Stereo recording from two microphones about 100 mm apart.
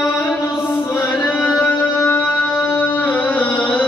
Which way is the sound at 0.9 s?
15° left (ahead or behind).